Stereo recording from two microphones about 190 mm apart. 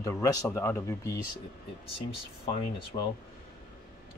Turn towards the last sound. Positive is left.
turn(degrees=30)  # may be behind; listen again after turning